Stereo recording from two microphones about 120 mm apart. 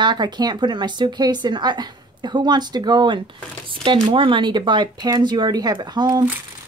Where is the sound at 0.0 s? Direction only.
40° right (ahead or behind).